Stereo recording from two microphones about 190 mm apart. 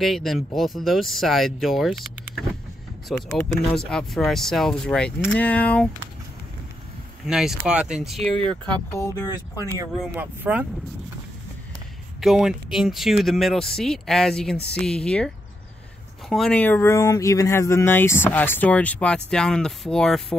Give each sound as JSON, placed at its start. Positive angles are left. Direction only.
{"t": 0.0, "sound": "speech", "side_deg": 0}
{"t": 3.3, "sound": "speech", "side_deg": 0}
{"t": 7.2, "sound": "speech", "side_deg": -5}
{"t": 8.9, "sound": "speech", "side_deg": 15}
{"t": 10.1, "sound": "speech", "side_deg": -10}
{"t": 12.2, "sound": "speech", "side_deg": 0}